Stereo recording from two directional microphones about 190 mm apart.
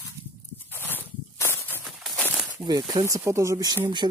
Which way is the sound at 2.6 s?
20° right (ahead or behind).